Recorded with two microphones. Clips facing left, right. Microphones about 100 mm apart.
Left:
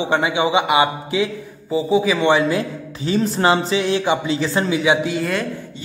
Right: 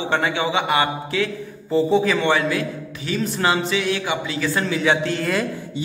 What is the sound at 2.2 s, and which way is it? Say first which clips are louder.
Speech: left 3 dB; 20° left (ahead or behind).